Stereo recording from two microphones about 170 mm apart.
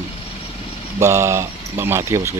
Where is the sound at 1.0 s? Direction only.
15° right (ahead or behind).